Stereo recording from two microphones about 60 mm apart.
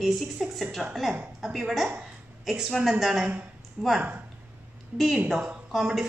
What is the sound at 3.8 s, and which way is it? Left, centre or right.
Speech, right.